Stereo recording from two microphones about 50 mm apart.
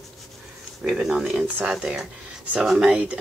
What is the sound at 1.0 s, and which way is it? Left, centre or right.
Speech, centre.